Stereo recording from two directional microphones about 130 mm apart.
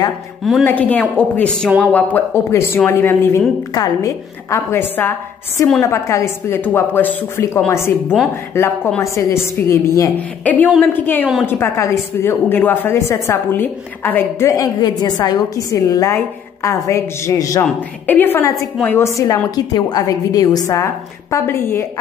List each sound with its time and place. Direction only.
0.4 s a woman's voice: centre (ahead or behind)
0.7 s a woman's voice: 10° left (ahead or behind)
14.5 s a woman's voice: 30° left (ahead or behind)